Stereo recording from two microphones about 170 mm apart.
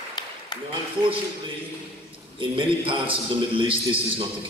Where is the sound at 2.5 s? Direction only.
30° right (ahead or behind).